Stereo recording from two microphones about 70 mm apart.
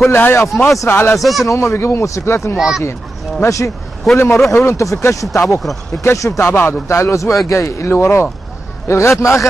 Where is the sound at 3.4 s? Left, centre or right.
Left.